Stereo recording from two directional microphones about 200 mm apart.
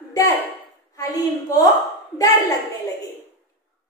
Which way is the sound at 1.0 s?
20° left (ahead or behind).